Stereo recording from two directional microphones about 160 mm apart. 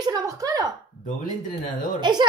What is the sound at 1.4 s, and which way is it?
Speech, 55° left (ahead or behind).